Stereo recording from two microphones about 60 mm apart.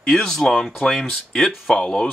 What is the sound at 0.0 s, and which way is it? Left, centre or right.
Speech, centre.